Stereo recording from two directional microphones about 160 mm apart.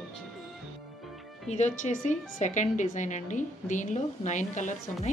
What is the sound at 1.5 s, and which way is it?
A woman's voice, 45° left (ahead or behind).